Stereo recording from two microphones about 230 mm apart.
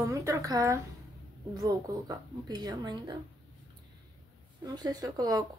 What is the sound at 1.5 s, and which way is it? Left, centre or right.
Speech, centre.